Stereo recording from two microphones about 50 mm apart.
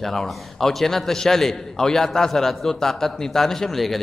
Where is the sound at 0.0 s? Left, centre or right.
Centre.